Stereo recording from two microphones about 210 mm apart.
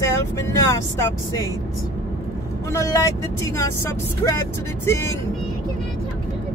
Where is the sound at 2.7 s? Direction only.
15° left (ahead or behind).